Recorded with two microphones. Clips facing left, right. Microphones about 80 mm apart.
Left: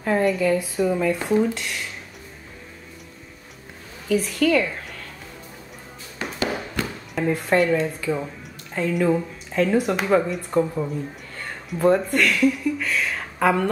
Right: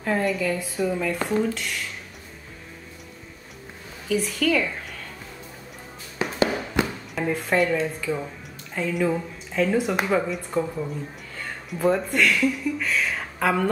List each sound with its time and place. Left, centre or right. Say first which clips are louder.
0.0 s a woman's voice: left 4 dB; centre
4.1 s a woman's voice: left 3 dB; centre
6.2 s music: right 3 dB; centre
6.8 s music: right 6 dB; centre
7.2 s a woman's voice: left 3 dB; centre